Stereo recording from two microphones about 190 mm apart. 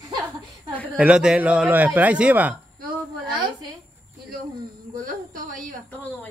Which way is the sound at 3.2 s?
20° right (ahead or behind).